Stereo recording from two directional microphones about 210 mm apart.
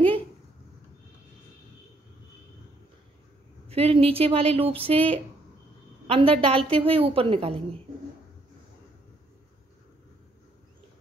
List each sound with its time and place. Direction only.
3.6 s a woman's voice: 30° right (ahead or behind)